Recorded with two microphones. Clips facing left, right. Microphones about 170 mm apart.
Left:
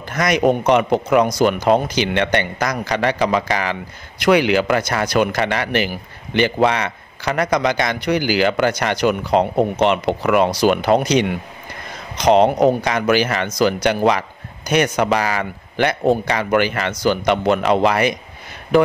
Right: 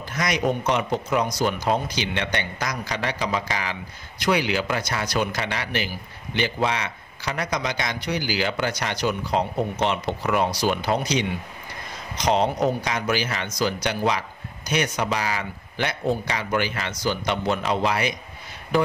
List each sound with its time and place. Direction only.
0.1 s a man's voice: 60° left (ahead or behind)